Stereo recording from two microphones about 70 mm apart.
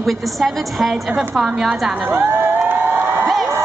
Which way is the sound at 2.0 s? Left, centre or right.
Right.